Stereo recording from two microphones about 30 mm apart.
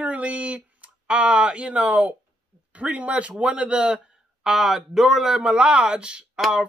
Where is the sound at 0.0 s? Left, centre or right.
Right.